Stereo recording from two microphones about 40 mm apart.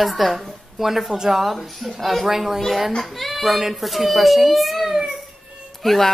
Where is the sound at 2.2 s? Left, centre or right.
Centre.